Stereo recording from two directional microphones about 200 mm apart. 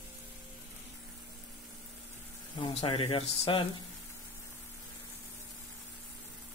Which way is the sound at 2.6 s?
30° left (ahead or behind).